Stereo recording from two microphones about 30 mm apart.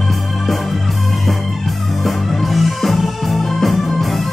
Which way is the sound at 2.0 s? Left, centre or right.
Centre.